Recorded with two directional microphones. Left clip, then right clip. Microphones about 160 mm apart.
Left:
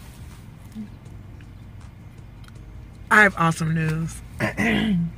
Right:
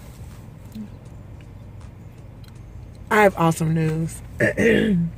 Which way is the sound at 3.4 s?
20° right (ahead or behind).